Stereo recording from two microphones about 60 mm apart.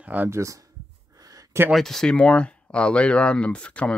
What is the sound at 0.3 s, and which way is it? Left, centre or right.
Speech, right.